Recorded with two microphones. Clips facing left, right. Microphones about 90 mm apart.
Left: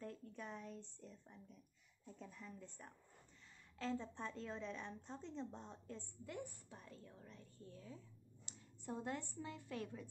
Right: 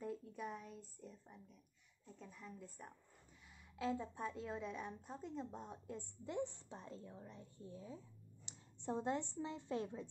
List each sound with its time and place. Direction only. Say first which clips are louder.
0.0 s a woman's voice: right 5 dB; 10° right (ahead or behind)